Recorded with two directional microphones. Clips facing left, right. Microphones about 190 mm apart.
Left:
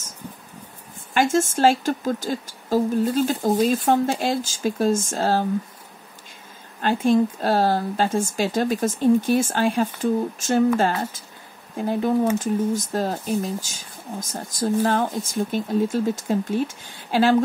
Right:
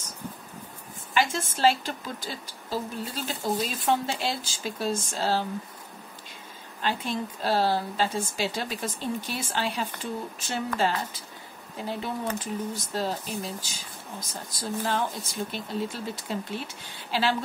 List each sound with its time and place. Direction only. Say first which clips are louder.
1.1 s speech: left 8 dB; 45° left (ahead or behind)
6.8 s speech: left 11 dB; 45° left (ahead or behind)